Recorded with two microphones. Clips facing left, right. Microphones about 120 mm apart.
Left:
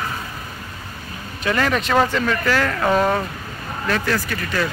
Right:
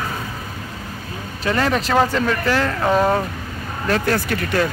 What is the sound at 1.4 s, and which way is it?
Speech, 30° right (ahead or behind).